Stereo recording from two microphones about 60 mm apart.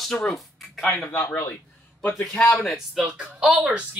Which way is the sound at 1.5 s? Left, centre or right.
Left.